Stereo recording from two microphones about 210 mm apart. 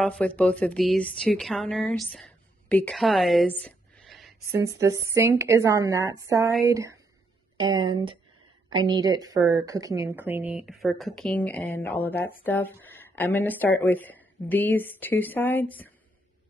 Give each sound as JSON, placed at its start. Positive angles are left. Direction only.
{"t": 0.0, "sound": "a woman's voice", "side_deg": 5}
{"t": 2.1, "sound": "a sound", "side_deg": 5}
{"t": 4.8, "sound": "speech", "side_deg": -15}